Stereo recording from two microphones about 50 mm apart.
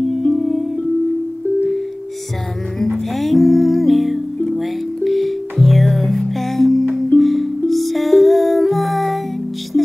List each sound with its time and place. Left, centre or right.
0.0 s music: centre
2.9 s music: centre